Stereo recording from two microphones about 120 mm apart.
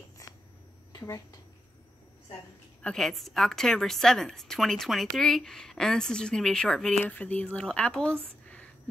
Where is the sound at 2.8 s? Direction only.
5° left (ahead or behind).